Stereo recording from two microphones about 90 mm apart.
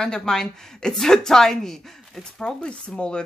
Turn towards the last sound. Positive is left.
turn(degrees=10)  # may be behind; listen again after turning